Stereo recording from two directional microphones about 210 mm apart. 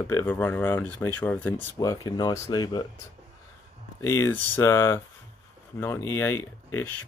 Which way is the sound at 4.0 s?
10° left (ahead or behind).